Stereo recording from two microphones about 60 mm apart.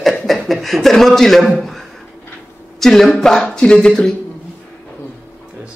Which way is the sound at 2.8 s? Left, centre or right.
Centre.